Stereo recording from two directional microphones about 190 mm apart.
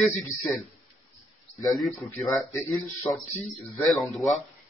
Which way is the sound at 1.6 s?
Centre (ahead or behind).